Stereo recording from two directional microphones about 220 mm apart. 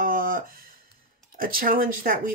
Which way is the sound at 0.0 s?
40° right (ahead or behind).